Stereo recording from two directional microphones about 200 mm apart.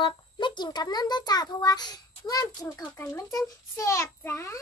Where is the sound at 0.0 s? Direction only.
25° left (ahead or behind).